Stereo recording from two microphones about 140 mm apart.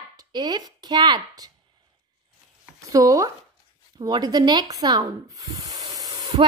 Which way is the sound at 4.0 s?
30° right (ahead or behind).